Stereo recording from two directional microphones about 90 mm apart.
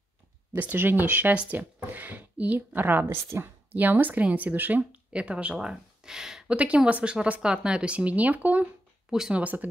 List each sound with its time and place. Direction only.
0.6 s a woman's voice: 20° right (ahead or behind)
9.1 s speech: 5° right (ahead or behind)
9.4 s speech: 20° right (ahead or behind)